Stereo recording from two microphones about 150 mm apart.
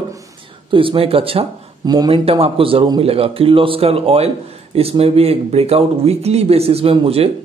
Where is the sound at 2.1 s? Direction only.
40° right (ahead or behind).